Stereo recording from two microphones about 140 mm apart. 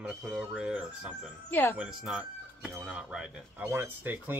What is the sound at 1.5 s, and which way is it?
Speech, 15° left (ahead or behind).